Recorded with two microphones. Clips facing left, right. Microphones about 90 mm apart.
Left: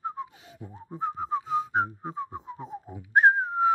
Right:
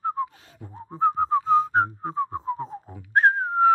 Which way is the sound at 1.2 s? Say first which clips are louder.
Right 7 dB; 10° left (ahead or behind).